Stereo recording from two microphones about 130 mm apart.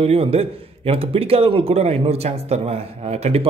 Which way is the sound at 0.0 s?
50° right (ahead or behind).